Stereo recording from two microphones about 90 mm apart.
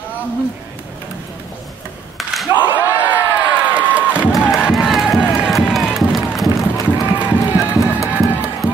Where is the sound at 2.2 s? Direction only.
Centre (ahead or behind).